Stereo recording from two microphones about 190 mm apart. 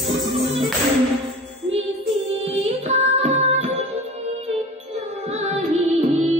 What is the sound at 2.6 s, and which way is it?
Music, 35° right (ahead or behind).